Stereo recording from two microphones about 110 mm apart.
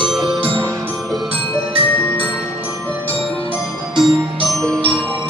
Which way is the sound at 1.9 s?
15° left (ahead or behind).